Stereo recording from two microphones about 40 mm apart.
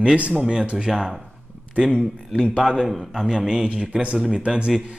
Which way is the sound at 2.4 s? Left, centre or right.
Centre.